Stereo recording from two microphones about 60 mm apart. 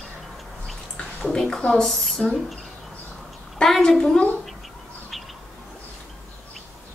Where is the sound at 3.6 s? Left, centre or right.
Centre.